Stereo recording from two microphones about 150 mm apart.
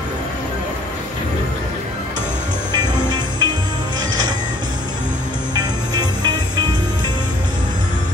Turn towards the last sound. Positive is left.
turn(degrees=-30)  # may be behind; listen again after turning